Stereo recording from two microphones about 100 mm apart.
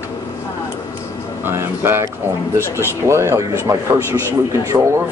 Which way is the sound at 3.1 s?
30° right (ahead or behind).